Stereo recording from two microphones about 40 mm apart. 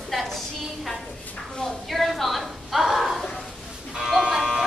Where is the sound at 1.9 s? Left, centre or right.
Centre.